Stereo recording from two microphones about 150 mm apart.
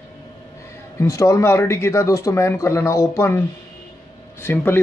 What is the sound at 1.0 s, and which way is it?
A man's voice, 20° left (ahead or behind).